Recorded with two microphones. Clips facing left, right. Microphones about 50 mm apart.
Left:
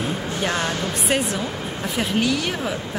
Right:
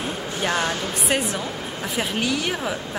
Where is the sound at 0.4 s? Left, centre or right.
Centre.